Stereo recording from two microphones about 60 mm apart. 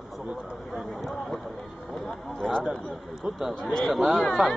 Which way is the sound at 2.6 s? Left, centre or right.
Centre.